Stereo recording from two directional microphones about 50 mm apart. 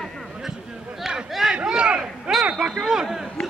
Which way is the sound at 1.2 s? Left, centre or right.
Centre.